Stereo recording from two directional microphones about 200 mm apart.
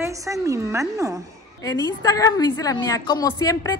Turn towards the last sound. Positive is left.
turn(degrees=15)  # may be behind; listen again after turning